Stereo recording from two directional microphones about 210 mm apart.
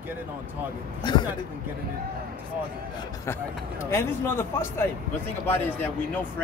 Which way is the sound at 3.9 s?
10° left (ahead or behind).